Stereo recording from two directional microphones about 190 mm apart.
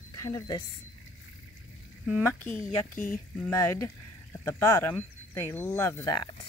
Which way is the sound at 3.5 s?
15° left (ahead or behind).